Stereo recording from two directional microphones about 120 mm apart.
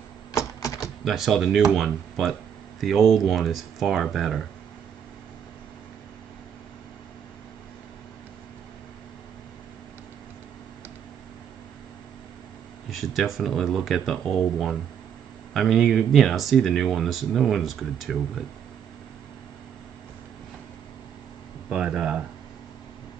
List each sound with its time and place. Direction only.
0.3 s typewriter: 25° left (ahead or behind)
1.0 s speech: centre (ahead or behind)
12.9 s speech: centre (ahead or behind)
21.6 s speech: 5° right (ahead or behind)